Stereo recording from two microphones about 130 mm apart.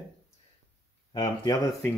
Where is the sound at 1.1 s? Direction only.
40° left (ahead or behind).